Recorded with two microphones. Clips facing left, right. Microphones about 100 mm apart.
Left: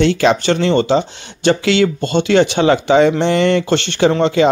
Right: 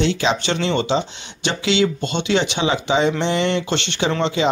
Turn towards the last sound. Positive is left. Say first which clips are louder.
# left 7 dB
turn(degrees=50)  # may be behind; listen again after turning